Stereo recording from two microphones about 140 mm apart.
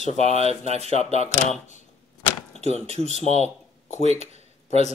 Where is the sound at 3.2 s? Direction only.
55° left (ahead or behind).